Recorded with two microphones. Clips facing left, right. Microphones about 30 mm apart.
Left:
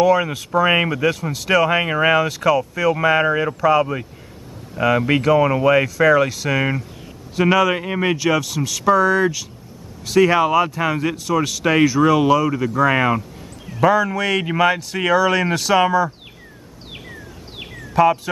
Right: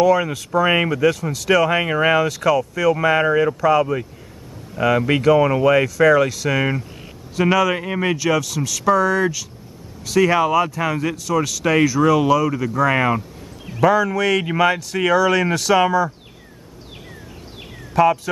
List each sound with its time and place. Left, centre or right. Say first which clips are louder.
0.0 s speech: even; centre
17.9 s speech: even; centre